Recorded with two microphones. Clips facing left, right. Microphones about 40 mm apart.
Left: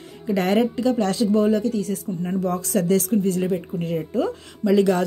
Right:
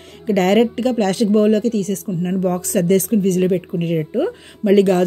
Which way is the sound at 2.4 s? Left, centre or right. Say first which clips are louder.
Right 4 dB; right.